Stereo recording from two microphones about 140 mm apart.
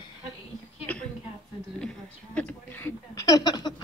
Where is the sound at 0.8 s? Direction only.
10° left (ahead or behind).